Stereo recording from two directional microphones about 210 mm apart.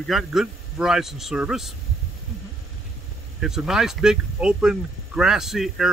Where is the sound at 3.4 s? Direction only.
Centre (ahead or behind).